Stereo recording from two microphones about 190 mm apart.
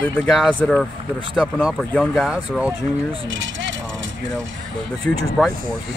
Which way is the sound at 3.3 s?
75° right (ahead or behind).